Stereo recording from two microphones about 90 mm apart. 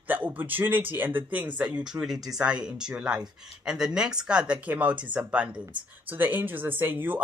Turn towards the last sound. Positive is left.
turn(degrees=-20)  # may be behind; listen again after turning